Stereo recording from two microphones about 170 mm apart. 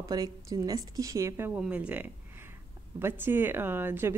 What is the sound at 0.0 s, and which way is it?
Speech, 20° right (ahead or behind).